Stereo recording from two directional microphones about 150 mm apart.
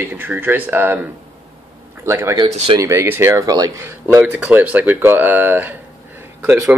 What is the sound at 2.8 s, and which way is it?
Speech, 20° right (ahead or behind).